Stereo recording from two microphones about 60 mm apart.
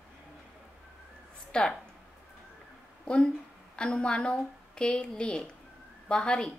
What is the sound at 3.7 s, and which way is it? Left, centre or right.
A woman's voice, centre.